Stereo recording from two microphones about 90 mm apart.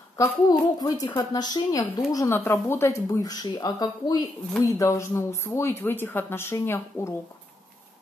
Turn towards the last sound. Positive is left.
turn(degrees=30)  # may be behind; listen again after turning